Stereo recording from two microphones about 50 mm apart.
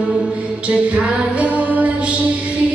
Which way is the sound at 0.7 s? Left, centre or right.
Right.